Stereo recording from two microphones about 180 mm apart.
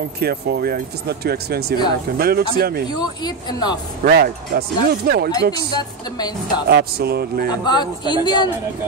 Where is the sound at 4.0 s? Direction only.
55° right (ahead or behind).